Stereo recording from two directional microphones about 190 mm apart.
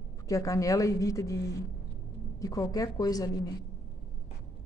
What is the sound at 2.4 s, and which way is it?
A woman's voice, 20° left (ahead or behind).